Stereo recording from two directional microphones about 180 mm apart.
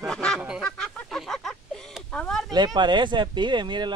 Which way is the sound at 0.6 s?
5° left (ahead or behind).